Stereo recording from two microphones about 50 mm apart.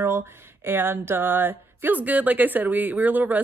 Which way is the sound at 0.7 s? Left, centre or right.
Right.